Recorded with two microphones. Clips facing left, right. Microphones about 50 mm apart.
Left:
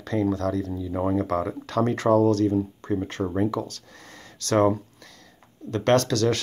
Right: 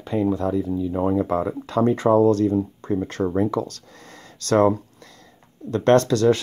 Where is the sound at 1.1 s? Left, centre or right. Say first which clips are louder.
Right 3 dB; right.